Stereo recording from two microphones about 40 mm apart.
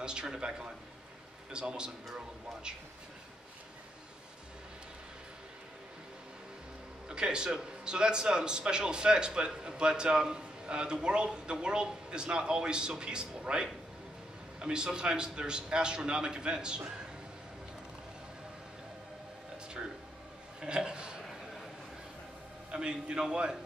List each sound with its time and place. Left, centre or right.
0.0 s a man's voice: right
7.1 s a man's voice: right
20.6 s a man's voice: right
22.7 s a man's voice: right